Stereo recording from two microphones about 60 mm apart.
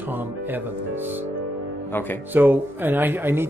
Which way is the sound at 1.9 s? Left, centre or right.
Left.